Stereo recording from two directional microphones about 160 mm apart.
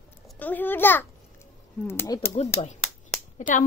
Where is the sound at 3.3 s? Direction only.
50° left (ahead or behind).